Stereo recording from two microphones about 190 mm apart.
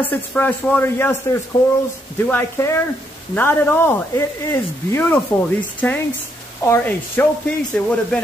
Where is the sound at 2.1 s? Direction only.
10° left (ahead or behind).